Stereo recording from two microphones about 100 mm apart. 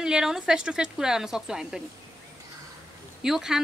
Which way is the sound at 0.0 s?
5° right (ahead or behind).